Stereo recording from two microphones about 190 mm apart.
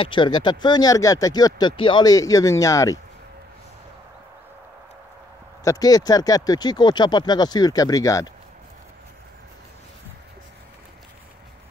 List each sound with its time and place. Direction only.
0.0 s speech: 25° left (ahead or behind)
5.6 s speech: 20° left (ahead or behind)